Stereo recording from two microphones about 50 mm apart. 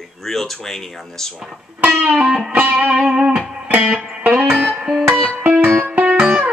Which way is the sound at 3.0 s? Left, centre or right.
Centre.